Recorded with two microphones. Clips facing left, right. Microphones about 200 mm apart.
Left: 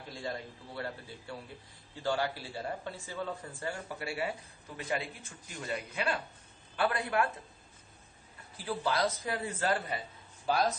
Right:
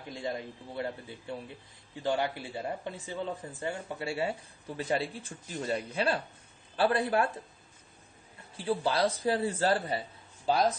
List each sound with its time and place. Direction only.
0.1 s a man's voice: 20° right (ahead or behind)
8.5 s a man's voice: 30° right (ahead or behind)